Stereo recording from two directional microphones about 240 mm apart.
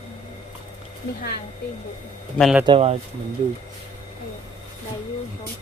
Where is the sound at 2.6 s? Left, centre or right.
Right.